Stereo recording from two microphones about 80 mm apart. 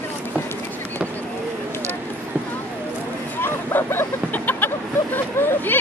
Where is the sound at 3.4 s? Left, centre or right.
Left.